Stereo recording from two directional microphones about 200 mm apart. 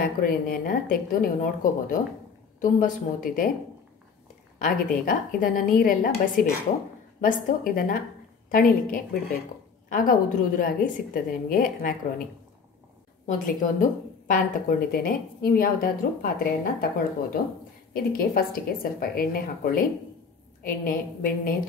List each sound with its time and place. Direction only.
0.0 s a woman's voice: 45° left (ahead or behind)
4.6 s a woman's voice: 45° left (ahead or behind)
13.5 s a woman's voice: 45° left (ahead or behind)